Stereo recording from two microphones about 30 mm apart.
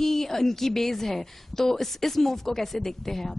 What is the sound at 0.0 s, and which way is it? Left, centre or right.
A man's voice, centre.